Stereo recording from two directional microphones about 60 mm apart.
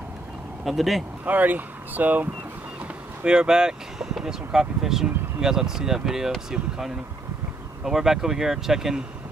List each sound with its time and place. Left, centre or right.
0.7 s speech: centre
1.2 s speech: right
3.3 s speech: centre